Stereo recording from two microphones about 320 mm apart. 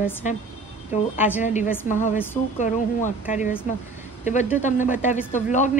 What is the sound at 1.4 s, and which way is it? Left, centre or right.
A woman's voice, left.